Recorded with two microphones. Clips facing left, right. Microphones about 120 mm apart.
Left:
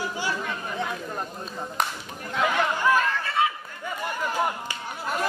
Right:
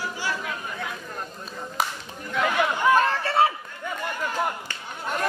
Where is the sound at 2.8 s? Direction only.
30° right (ahead or behind).